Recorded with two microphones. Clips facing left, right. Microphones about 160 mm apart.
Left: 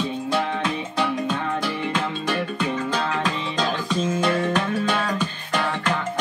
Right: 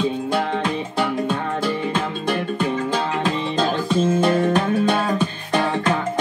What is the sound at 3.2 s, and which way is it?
Music, 30° right (ahead or behind).